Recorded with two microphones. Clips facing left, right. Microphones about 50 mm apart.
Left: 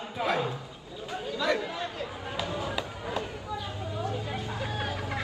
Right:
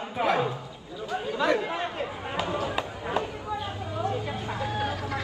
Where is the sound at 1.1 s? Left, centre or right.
Right.